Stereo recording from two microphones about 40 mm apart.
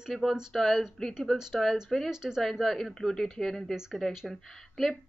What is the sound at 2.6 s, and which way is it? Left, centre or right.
Speech, centre.